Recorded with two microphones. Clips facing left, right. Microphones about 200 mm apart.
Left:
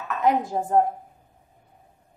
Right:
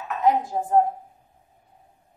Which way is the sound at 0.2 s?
70° left (ahead or behind).